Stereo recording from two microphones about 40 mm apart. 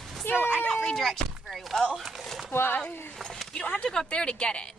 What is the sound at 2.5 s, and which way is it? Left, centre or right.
Speech, left.